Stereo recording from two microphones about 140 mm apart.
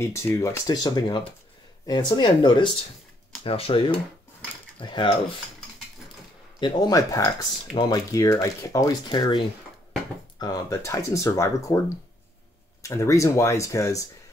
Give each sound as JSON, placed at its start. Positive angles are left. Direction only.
{"t": 0.0, "sound": "speech", "side_deg": 20}
{"t": 6.6, "sound": "speech", "side_deg": 25}
{"t": 9.1, "sound": "speech", "side_deg": 35}
{"t": 10.4, "sound": "speech", "side_deg": 25}
{"t": 12.8, "sound": "speech", "side_deg": 20}